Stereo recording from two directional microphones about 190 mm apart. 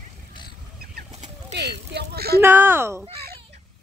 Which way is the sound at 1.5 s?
60° right (ahead or behind).